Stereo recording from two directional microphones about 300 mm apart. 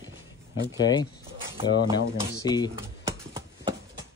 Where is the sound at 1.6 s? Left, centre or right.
Centre.